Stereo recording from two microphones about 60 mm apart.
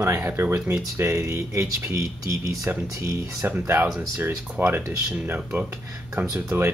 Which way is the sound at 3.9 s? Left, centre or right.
Right.